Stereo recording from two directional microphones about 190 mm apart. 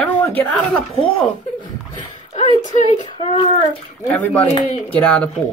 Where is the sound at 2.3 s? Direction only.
35° left (ahead or behind).